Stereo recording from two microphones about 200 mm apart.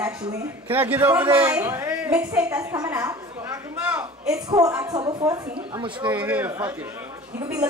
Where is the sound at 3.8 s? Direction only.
5° right (ahead or behind).